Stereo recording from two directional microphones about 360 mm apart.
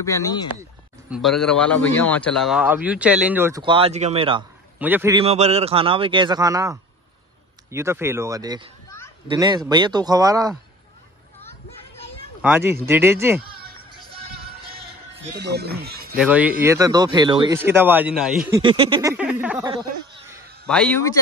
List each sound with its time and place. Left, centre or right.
0.0 s a man's voice: centre
12.4 s speech: centre
15.3 s speech: right
16.2 s speech: centre
18.6 s speech: centre
20.6 s a man's voice: centre